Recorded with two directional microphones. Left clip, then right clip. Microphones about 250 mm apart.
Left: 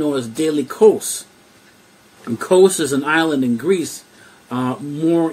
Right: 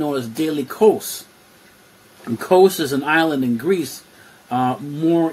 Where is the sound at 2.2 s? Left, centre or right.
Centre.